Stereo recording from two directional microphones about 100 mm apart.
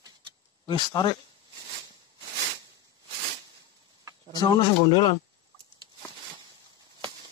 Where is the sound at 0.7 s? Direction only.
45° left (ahead or behind).